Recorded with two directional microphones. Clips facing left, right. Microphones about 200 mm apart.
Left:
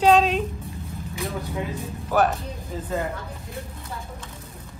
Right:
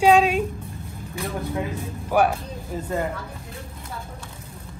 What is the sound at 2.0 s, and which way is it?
Speech, 10° right (ahead or behind).